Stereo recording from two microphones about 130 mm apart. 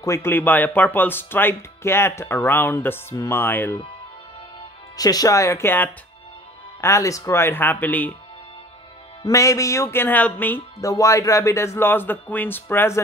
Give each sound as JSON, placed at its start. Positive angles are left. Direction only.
{"t": 0.0, "sound": "speech", "side_deg": 20}
{"t": 4.9, "sound": "speech", "side_deg": 30}
{"t": 9.2, "sound": "speech", "side_deg": 25}
{"t": 10.8, "sound": "speech", "side_deg": 25}